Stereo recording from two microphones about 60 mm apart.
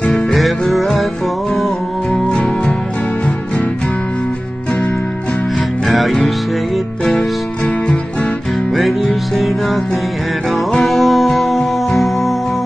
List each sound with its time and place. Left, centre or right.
0.1 s music: centre
2.2 s music: centre
5.9 s music: centre
8.7 s music: centre
10.8 s music: centre